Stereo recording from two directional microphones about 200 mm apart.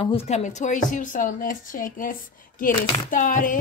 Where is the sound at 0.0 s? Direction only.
30° left (ahead or behind).